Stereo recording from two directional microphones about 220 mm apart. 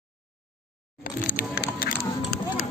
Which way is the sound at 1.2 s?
40° left (ahead or behind).